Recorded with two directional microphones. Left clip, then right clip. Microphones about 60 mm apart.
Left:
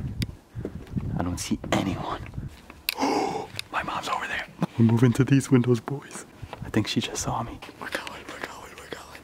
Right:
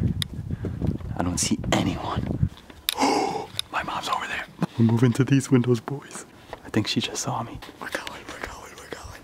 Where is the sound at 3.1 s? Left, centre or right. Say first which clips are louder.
Right 2 dB; centre.